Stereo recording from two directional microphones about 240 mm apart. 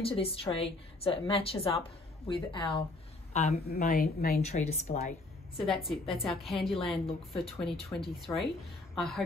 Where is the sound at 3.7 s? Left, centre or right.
Left.